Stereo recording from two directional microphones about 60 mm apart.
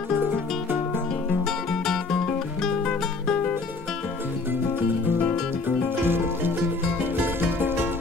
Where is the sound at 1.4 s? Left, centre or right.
Centre.